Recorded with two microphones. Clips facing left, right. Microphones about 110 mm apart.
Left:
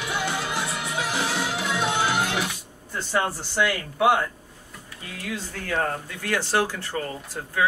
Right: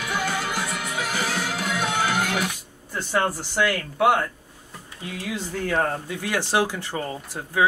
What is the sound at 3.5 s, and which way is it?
Speech, 10° left (ahead or behind).